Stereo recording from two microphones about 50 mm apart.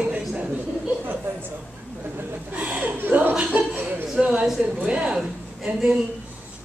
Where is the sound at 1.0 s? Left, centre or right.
Right.